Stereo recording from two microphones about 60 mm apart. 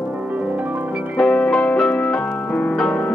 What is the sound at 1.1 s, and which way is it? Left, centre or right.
Music, centre.